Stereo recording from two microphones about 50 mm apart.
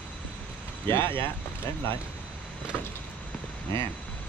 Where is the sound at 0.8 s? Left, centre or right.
Left.